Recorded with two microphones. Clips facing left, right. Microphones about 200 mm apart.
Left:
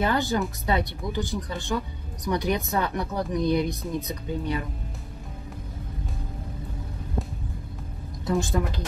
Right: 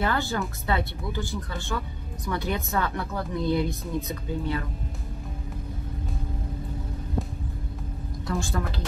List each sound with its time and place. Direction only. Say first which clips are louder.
0.0 s speech: left 3 dB; 15° left (ahead or behind)
8.3 s a woman's voice: left 4 dB; 20° left (ahead or behind)